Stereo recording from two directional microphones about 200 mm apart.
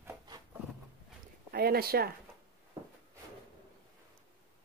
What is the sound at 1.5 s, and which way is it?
Speech, 50° right (ahead or behind).